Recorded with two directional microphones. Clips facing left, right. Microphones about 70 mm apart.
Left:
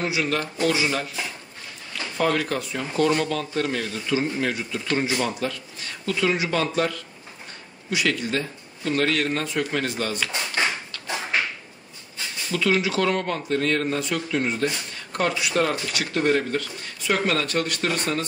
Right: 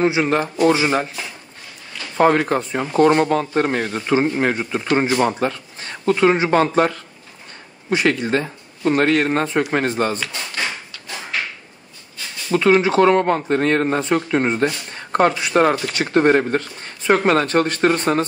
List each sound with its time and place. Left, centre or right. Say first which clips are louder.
0.0 s speech: right 7 dB; right
2.1 s speech: right 8 dB; right
11.3 s drawer open or close: even; left
12.4 s speech: right 8 dB; right